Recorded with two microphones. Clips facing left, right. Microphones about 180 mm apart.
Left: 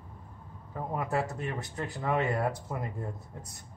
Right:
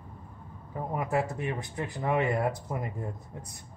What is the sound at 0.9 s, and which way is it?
Speech, 15° right (ahead or behind).